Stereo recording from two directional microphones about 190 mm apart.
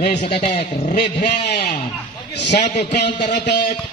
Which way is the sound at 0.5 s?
35° left (ahead or behind).